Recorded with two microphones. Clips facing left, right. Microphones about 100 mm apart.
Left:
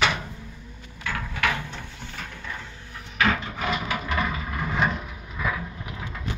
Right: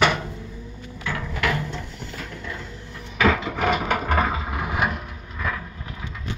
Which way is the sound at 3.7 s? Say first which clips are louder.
Right 5 dB; 50° right (ahead or behind).